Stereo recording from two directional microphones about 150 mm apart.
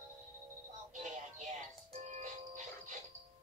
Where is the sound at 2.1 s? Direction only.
50° right (ahead or behind).